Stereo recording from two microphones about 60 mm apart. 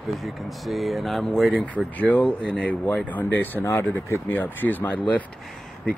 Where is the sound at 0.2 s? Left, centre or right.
Centre.